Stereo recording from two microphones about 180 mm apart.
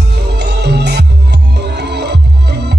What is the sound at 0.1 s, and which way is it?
Music, 65° right (ahead or behind).